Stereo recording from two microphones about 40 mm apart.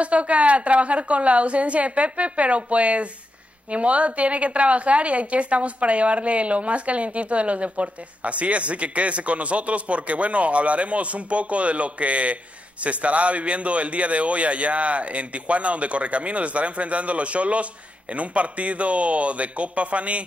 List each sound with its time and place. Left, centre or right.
0.0 s a woman's voice: right